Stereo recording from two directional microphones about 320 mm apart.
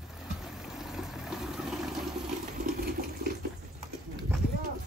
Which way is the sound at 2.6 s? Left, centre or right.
Right.